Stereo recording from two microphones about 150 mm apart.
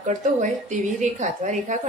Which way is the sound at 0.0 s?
55° right (ahead or behind).